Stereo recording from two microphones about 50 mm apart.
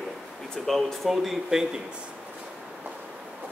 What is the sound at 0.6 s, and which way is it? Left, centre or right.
Speech, centre.